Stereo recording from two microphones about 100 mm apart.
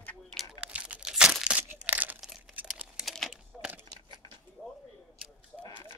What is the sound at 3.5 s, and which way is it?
Crunch, 10° right (ahead or behind).